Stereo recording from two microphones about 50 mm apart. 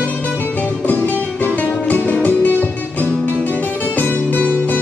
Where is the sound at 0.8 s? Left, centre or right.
Left.